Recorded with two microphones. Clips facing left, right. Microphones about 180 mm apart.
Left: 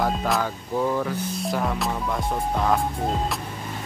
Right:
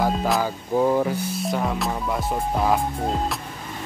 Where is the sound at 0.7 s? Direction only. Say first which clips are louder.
Right 4 dB; 25° right (ahead or behind).